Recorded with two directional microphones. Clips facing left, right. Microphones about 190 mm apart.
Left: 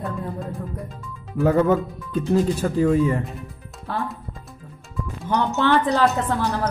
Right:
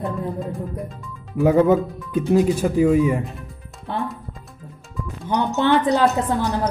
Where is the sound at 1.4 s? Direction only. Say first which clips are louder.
Right 3 dB; 15° right (ahead or behind).